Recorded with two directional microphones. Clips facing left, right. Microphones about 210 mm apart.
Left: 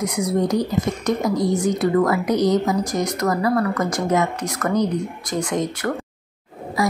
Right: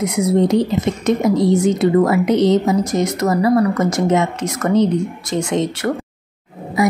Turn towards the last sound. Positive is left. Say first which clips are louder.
# right 5 dB
turn(degrees=-20)  # may be behind; listen again after turning